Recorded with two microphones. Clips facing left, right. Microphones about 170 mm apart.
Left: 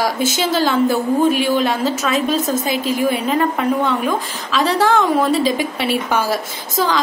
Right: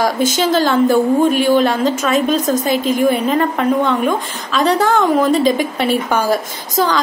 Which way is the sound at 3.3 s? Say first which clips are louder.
Right 2 dB; 10° left (ahead or behind).